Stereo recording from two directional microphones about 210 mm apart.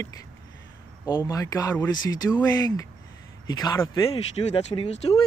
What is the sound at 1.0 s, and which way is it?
Speech, 20° left (ahead or behind).